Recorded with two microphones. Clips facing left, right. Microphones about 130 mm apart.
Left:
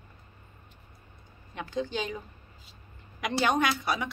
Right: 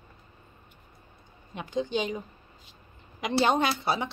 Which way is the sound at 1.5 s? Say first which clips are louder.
Right 3 dB; 20° right (ahead or behind).